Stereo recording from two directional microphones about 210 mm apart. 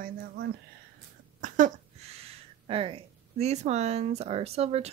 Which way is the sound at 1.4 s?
35° right (ahead or behind).